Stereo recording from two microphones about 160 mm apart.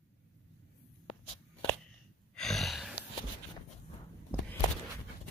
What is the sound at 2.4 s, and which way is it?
Gasp, centre (ahead or behind).